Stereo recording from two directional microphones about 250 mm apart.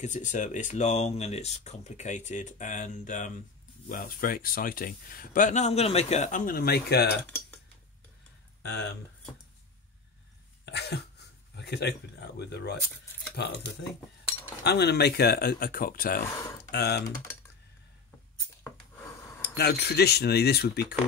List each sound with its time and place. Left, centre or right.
0.0 s speech: left
7.2 s typing: centre
8.6 s speech: left
10.6 s cough: left
11.5 s speech: left
14.6 s speech: left
16.3 s speech: centre
16.7 s speech: left
19.4 s speech: left